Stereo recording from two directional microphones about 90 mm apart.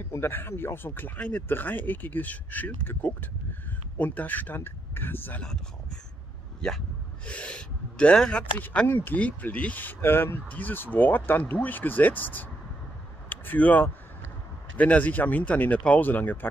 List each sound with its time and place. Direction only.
0.1 s speech: 25° left (ahead or behind)
7.2 s speech: 15° left (ahead or behind)